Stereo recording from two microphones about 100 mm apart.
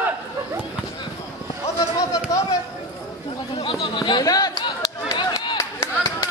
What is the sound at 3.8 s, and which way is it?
Speech, 50° left (ahead or behind).